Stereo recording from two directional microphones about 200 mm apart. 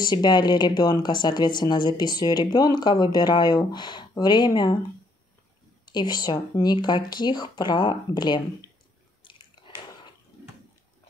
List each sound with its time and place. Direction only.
0.0 s speech: 20° left (ahead or behind)
5.9 s speech: 20° left (ahead or behind)